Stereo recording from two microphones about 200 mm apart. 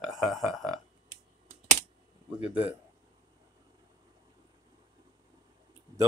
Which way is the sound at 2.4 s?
5° right (ahead or behind).